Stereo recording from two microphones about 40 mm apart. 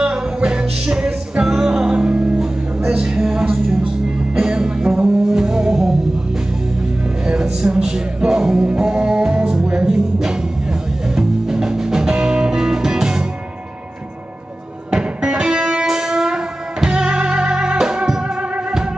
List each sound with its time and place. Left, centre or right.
0.0 s music: right
7.2 s music: centre
14.9 s music: right